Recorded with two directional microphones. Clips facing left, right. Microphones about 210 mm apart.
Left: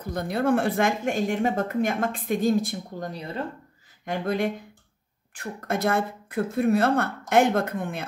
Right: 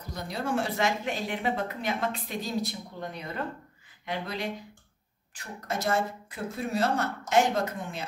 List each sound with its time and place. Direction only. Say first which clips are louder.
0.0 s a woman's voice: left 9 dB; 55° left (ahead or behind)